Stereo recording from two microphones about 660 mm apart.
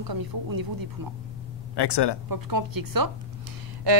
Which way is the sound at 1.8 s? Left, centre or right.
Left.